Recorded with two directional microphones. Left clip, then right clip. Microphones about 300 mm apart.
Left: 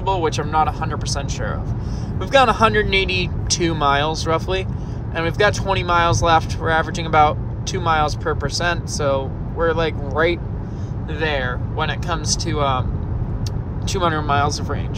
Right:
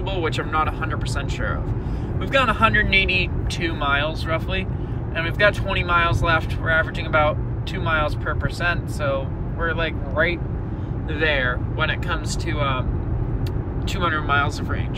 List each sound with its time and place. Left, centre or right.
0.0 s speech: centre
13.9 s speech: centre